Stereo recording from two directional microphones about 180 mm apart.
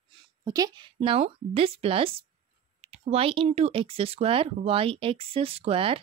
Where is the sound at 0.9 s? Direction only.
35° right (ahead or behind).